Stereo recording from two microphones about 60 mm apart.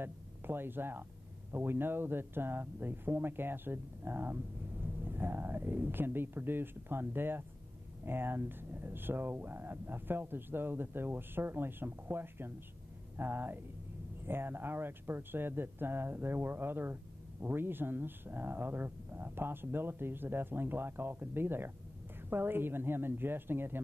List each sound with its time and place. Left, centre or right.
0.0 s speech: right